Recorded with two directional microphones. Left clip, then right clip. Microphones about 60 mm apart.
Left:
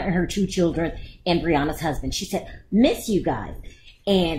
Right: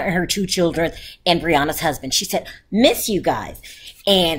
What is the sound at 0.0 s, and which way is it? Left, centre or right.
A woman's voice, right.